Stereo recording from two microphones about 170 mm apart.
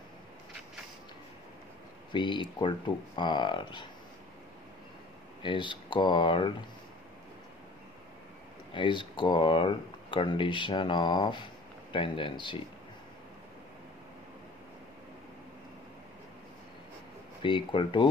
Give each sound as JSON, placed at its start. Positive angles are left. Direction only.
{"t": 2.1, "sound": "speech", "side_deg": 30}
{"t": 5.4, "sound": "speech", "side_deg": 30}
{"t": 8.7, "sound": "speech", "side_deg": 30}
{"t": 17.4, "sound": "speech", "side_deg": 30}